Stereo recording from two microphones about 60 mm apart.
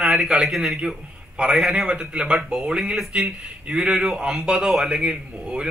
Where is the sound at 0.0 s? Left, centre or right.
Centre.